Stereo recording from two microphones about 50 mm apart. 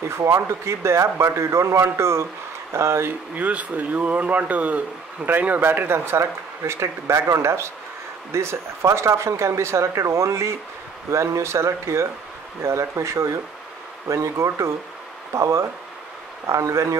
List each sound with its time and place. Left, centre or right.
0.7 s speech: right
3.3 s speech: right